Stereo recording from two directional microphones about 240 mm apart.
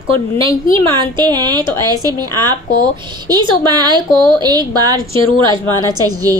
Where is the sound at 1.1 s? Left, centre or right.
Centre.